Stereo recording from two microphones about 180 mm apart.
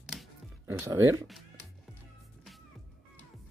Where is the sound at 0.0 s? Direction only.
Centre (ahead or behind).